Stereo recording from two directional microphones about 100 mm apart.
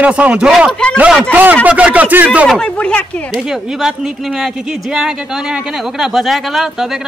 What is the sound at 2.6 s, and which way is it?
Speech, 10° left (ahead or behind).